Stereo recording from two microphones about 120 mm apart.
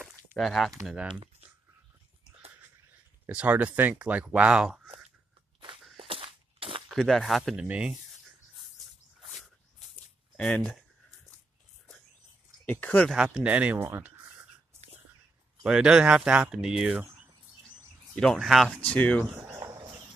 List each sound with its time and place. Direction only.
0.4 s speech: centre (ahead or behind)
0.8 s speech: 10° right (ahead or behind)
3.3 s speech: 10° right (ahead or behind)
5.9 s a sound: 50° right (ahead or behind)
6.9 s speech: 5° left (ahead or behind)
10.3 s speech: 10° left (ahead or behind)
12.6 s speech: 15° left (ahead or behind)
13.1 s speech: 5° right (ahead or behind)
15.6 s speech: 5° right (ahead or behind)
18.1 s speech: 5° left (ahead or behind)
18.8 s speech: 10° left (ahead or behind)
19.3 s a sound: 20° right (ahead or behind)
19.6 s horse: 30° right (ahead or behind)